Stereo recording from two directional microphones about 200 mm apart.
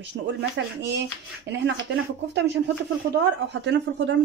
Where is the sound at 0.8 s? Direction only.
60° right (ahead or behind).